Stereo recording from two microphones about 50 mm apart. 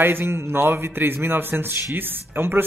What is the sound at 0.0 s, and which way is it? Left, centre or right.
A man's voice, right.